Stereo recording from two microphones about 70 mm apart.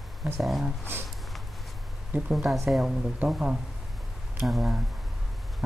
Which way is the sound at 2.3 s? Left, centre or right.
Centre.